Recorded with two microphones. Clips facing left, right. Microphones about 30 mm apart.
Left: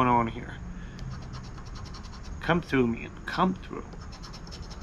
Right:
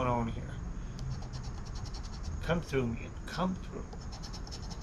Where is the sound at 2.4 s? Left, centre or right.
Left.